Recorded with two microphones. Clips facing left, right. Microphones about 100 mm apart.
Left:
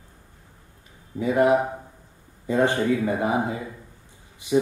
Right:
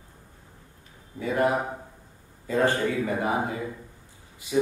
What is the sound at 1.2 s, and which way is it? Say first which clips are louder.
Speech: left 5 dB; 20° left (ahead or behind).